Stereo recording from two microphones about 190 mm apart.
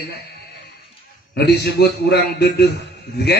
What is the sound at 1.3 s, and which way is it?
Speech, 60° left (ahead or behind).